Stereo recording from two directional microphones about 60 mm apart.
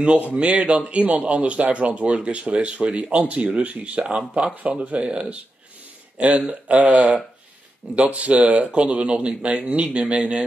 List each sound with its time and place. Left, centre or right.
0.0 s a man's voice: right